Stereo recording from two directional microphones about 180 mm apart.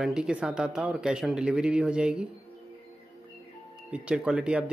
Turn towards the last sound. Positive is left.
turn(degrees=-5)  # may be behind; listen again after turning